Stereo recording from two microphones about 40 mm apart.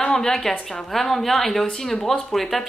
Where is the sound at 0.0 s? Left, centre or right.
Left.